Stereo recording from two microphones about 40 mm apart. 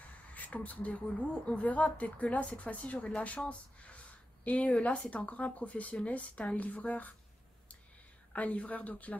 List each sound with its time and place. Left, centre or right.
0.3 s a woman's voice: left
3.4 s a sound: left
4.5 s a woman's voice: left
8.3 s a woman's voice: left